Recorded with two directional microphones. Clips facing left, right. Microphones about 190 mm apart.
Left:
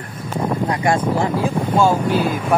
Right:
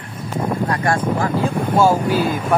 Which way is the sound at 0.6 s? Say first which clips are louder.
Left 2 dB; 15° left (ahead or behind).